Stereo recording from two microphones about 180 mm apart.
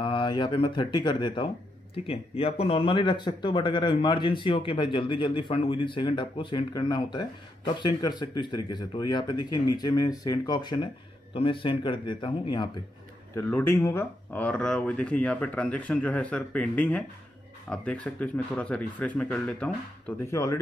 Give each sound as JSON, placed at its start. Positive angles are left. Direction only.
{"t": 0.0, "sound": "speech", "side_deg": 25}
{"t": 13.3, "sound": "speech", "side_deg": 15}